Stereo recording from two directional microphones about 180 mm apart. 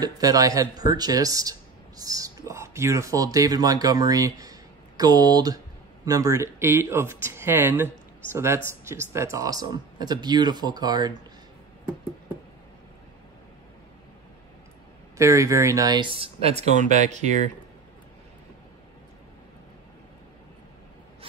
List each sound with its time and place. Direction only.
0.0 s speech: 20° right (ahead or behind)
15.1 s speech: 15° right (ahead or behind); by 17.3 s 40° right (ahead or behind)